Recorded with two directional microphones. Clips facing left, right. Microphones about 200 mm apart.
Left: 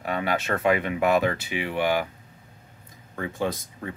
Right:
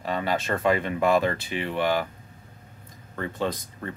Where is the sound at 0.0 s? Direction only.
10° left (ahead or behind).